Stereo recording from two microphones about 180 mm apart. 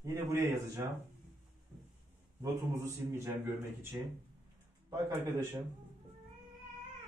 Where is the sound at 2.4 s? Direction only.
15° right (ahead or behind).